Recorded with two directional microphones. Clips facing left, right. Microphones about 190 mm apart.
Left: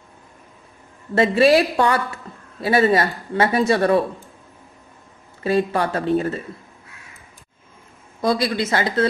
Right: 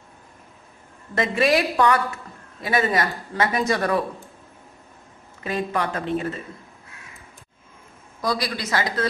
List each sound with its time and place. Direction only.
1.1 s speech: 30° left (ahead or behind)
5.4 s speech: 35° left (ahead or behind)
8.2 s speech: 25° left (ahead or behind)